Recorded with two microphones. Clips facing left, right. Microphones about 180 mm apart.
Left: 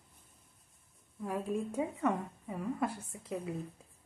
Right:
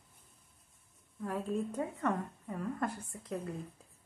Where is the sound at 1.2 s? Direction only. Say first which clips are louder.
Even; 10° left (ahead or behind).